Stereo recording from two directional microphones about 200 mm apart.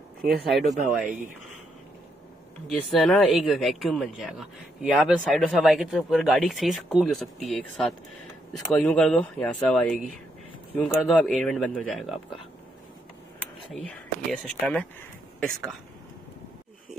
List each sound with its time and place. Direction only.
0.5 s speech: centre (ahead or behind)
2.7 s speech: centre (ahead or behind)
13.7 s speech: 5° left (ahead or behind)